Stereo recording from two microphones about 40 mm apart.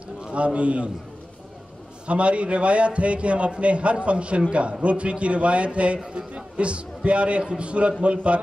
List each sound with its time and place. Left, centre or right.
0.2 s a man's voice: right
2.0 s a man's voice: right